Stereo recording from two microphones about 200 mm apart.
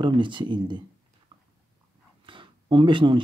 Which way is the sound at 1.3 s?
25° right (ahead or behind).